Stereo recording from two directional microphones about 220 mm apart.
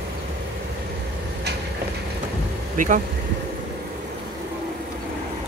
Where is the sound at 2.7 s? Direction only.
35° right (ahead or behind).